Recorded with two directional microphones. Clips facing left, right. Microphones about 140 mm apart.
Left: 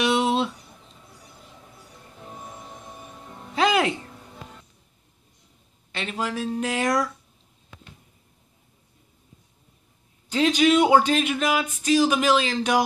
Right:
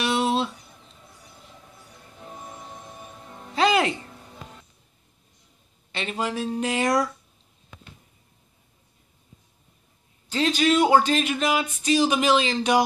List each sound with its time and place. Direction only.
0.0 s a sound: 15° left (ahead or behind)
3.5 s music: 5° left (ahead or behind)
5.9 s speech: centre (ahead or behind)
10.3 s speech: 10° left (ahead or behind)